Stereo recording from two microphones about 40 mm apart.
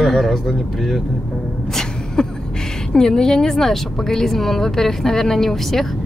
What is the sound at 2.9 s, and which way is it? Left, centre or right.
A woman's voice, centre.